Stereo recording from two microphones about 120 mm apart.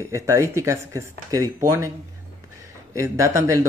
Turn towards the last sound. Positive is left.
turn(degrees=-25)  # may be behind; listen again after turning